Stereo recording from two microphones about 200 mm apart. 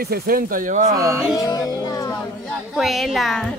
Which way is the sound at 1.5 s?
20° left (ahead or behind).